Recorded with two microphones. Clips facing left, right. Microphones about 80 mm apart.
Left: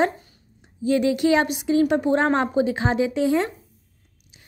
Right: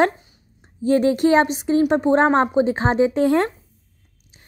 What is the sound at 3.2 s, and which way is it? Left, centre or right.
Speech, right.